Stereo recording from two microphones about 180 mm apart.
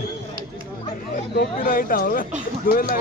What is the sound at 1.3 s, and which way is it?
Speech, 50° left (ahead or behind).